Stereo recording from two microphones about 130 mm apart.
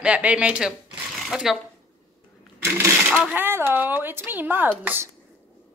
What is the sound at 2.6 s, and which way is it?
Speech, 20° right (ahead or behind).